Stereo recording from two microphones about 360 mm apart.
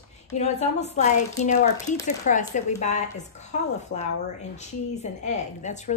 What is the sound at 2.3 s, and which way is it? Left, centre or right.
Speech, centre.